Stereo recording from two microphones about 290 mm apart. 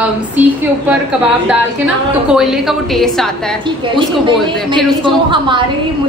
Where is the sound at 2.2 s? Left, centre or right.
Centre.